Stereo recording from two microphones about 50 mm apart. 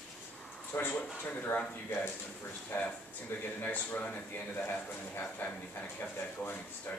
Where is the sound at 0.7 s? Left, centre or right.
Left.